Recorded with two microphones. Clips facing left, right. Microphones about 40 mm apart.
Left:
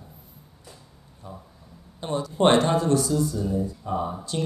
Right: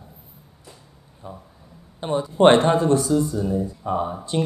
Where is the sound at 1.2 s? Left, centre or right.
Right.